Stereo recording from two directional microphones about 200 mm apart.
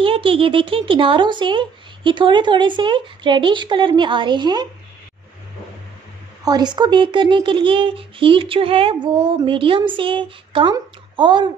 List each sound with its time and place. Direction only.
0.0 s a child's voice: 25° right (ahead or behind)
6.4 s a child's voice: 20° right (ahead or behind)